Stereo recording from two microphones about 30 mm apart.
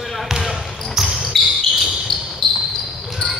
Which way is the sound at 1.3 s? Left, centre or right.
Centre.